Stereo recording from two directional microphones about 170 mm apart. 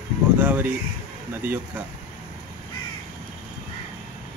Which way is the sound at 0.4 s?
10° right (ahead or behind).